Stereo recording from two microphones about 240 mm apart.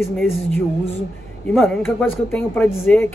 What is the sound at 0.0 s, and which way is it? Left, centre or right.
Speech, centre.